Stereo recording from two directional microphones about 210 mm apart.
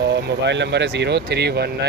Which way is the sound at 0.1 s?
55° right (ahead or behind).